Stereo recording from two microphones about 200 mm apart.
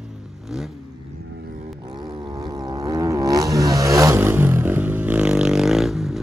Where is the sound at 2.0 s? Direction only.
20° right (ahead or behind).